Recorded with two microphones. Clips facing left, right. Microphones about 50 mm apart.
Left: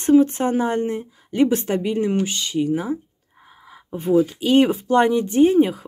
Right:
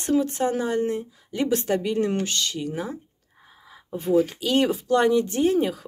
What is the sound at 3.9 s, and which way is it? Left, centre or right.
Speech, left.